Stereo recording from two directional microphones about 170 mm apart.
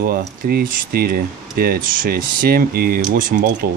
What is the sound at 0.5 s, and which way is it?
Speech, 60° right (ahead or behind).